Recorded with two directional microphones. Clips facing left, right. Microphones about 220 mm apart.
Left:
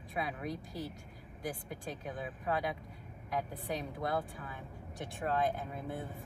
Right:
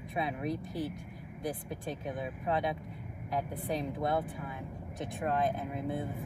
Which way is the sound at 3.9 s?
20° right (ahead or behind).